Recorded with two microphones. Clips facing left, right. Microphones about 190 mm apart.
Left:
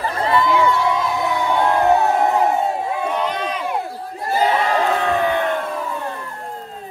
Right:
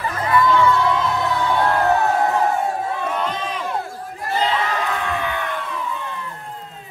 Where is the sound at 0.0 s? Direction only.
30° left (ahead or behind).